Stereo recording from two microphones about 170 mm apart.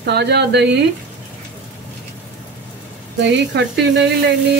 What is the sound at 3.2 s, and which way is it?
Speech, 90° right.